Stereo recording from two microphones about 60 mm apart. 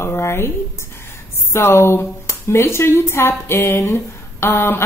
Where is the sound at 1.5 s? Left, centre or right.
Left.